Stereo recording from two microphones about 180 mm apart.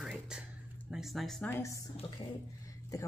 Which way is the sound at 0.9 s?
Centre (ahead or behind).